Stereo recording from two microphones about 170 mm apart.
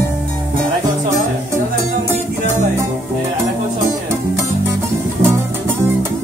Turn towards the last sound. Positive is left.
turn(degrees=-15)  # may be behind; listen again after turning